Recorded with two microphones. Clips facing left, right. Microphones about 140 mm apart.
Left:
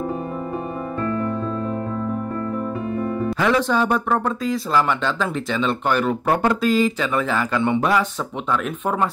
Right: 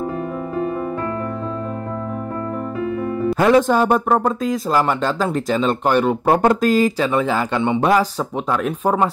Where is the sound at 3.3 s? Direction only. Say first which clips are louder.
Right 6 dB; 45° right (ahead or behind).